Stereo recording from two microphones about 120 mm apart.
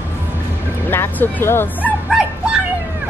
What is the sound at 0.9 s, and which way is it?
Speech, 20° left (ahead or behind).